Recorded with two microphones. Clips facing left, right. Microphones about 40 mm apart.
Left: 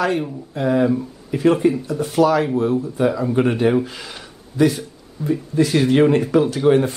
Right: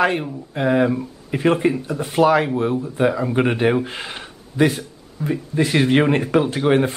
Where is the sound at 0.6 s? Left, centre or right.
Right.